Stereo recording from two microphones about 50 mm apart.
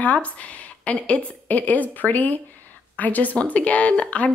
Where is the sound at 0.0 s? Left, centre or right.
Left.